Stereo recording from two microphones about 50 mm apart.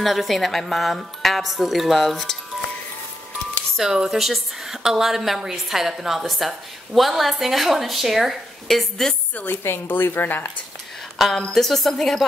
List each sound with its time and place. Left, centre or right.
0.0 s a woman's voice: centre
3.7 s a woman's voice: centre
9.3 s a woman's voice: left
9.6 s speech: left
11.1 s a woman's voice: centre